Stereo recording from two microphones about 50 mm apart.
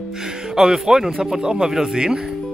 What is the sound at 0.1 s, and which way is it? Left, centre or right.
Music, centre.